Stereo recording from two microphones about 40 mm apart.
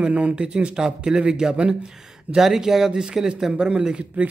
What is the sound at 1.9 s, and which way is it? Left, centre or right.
Speech, centre.